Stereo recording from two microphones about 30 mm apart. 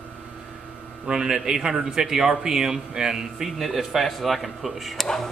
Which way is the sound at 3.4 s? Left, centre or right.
Centre.